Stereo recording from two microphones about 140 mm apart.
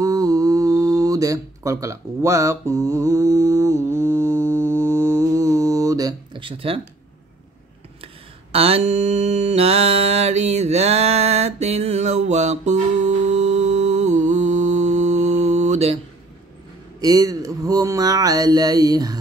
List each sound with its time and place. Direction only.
0.0 s a sound: 25° right (ahead or behind)
6.4 s speech: 40° right (ahead or behind)
8.0 s mantra: 45° right (ahead or behind)
17.0 s speech: 25° right (ahead or behind)